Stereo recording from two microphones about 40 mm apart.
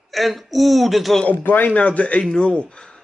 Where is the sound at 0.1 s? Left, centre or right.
Centre.